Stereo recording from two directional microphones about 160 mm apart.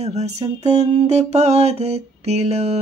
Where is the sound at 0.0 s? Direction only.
45° right (ahead or behind).